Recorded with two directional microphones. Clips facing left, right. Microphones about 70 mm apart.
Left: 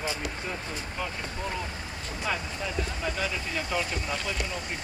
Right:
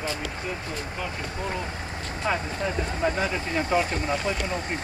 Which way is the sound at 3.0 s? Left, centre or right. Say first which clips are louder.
Right 6 dB; right.